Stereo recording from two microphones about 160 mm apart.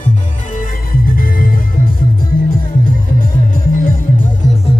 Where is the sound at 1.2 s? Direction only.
60° left (ahead or behind).